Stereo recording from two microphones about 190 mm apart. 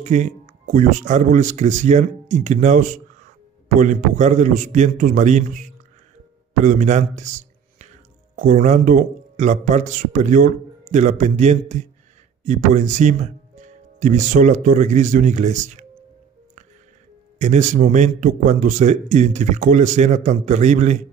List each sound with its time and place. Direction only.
0.0 s a man's voice: 40° right (ahead or behind)
17.4 s speech: 40° right (ahead or behind)